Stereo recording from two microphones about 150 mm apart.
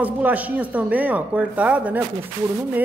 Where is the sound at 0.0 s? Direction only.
10° right (ahead or behind).